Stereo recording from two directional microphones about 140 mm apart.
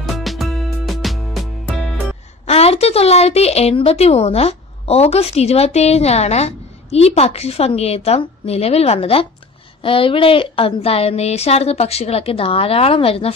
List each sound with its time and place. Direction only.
0.0 s music: centre (ahead or behind)
2.4 s a woman's voice: 45° left (ahead or behind)